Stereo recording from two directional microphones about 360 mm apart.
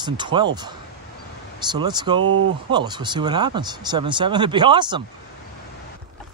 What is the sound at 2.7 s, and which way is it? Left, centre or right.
Speech, centre.